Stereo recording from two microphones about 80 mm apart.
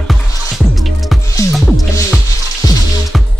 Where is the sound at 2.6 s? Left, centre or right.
Left.